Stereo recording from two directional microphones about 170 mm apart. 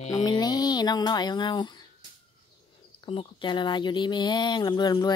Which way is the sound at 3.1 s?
30° left (ahead or behind).